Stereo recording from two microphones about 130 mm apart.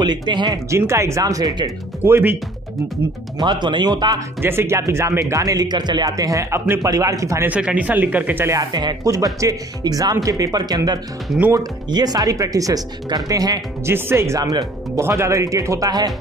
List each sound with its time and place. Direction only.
0.0 s speech: 35° right (ahead or behind)
0.7 s speech: 20° right (ahead or behind)
2.0 s speech: 15° right (ahead or behind)
3.3 s speech: 35° right (ahead or behind)
4.4 s speech: 20° right (ahead or behind)
7.4 s speech: 10° right (ahead or behind)
8.5 s speech: 30° right (ahead or behind)
11.2 s speech: 10° right (ahead or behind)
11.5 s speech: 30° right (ahead or behind)